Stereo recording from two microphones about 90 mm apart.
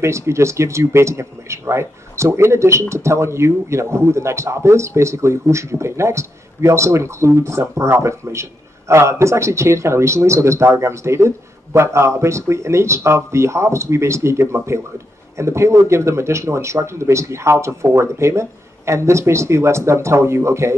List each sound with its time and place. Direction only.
0.0 s speech: 30° right (ahead or behind)